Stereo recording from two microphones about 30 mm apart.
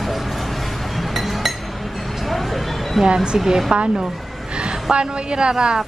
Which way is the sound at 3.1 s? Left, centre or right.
Right.